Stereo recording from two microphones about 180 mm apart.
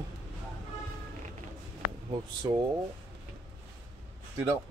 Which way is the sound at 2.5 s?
20° right (ahead or behind).